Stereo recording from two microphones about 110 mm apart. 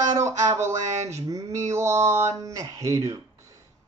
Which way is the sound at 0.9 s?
90° right.